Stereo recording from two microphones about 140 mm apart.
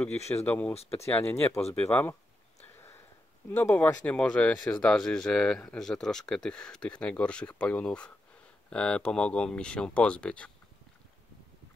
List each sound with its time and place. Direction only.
0.5 s speech: 10° left (ahead or behind)
3.4 s speech: 10° left (ahead or behind)